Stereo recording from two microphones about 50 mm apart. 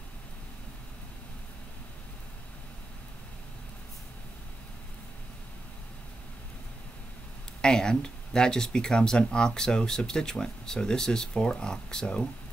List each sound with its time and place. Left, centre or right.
7.6 s speech: centre